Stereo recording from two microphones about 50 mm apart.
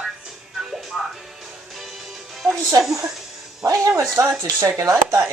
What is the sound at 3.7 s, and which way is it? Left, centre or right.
Speech, right.